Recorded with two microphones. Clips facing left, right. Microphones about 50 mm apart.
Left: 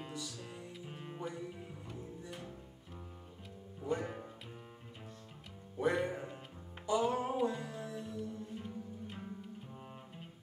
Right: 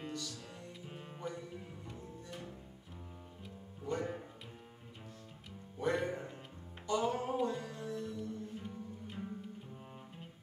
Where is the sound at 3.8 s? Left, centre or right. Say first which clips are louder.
Left 1 dB; centre.